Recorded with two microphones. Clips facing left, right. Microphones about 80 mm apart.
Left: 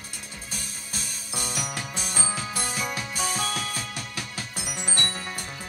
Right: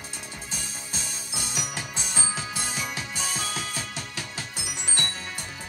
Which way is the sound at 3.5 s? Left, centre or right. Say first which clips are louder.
Left 1 dB; right.